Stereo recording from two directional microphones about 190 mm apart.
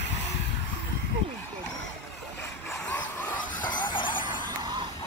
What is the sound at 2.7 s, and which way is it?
Vehicle, 10° left (ahead or behind).